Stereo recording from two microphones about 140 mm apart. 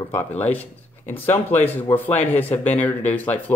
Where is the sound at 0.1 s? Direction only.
10° left (ahead or behind).